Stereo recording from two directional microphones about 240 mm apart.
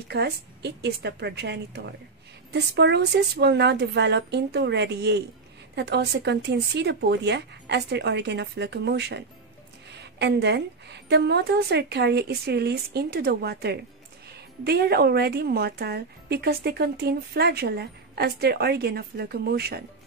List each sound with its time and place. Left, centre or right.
0.1 s a woman's voice: right